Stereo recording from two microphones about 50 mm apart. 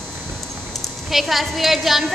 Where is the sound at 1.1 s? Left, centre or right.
Centre.